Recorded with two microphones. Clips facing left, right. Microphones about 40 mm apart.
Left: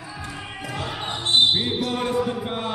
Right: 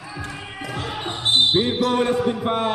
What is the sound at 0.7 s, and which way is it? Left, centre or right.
Basketball bounce, centre.